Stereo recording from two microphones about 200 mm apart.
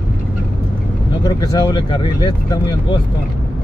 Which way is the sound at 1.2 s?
20° left (ahead or behind).